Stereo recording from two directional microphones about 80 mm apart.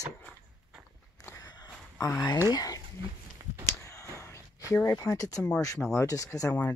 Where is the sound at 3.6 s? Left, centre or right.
Left.